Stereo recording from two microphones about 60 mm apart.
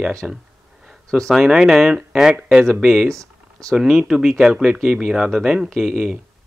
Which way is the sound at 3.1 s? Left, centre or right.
Right.